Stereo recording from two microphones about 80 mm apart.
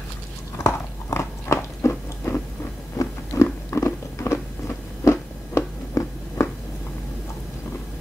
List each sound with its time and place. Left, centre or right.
0.7 s biting: left
3.3 s biting: left